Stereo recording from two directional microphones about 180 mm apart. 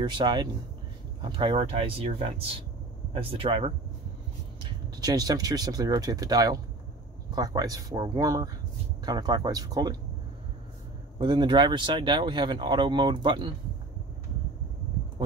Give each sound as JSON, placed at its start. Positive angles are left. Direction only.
{"t": 0.0, "sound": "speech", "side_deg": -25}
{"t": 11.1, "sound": "speech", "side_deg": -25}